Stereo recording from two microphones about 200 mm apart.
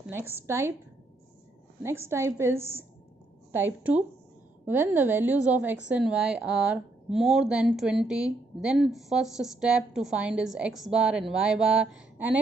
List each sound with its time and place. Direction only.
0.1 s a woman's voice: 10° right (ahead or behind)
1.8 s a woman's voice: 10° right (ahead or behind)